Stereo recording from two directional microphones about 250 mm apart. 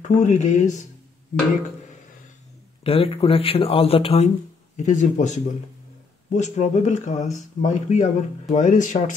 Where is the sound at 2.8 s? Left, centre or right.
Left.